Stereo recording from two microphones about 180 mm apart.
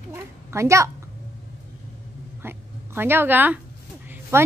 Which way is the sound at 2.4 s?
10° right (ahead or behind).